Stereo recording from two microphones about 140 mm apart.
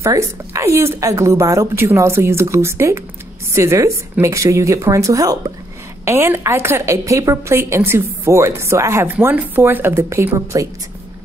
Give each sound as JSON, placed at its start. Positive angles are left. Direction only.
{"t": 0.0, "sound": "a woman's voice", "side_deg": -20}